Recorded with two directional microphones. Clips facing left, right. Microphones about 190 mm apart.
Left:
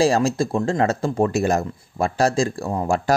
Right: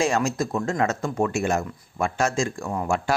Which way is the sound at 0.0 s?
35° left (ahead or behind).